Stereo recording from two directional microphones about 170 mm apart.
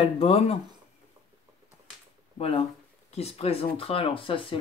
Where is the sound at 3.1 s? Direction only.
40° left (ahead or behind).